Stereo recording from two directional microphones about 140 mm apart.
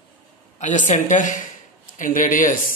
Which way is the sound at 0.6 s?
60° left (ahead or behind).